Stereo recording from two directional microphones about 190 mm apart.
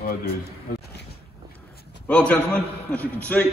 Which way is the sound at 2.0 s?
5° left (ahead or behind).